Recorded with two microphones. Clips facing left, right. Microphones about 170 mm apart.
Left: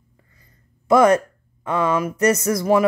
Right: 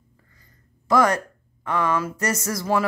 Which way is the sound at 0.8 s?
20° left (ahead or behind).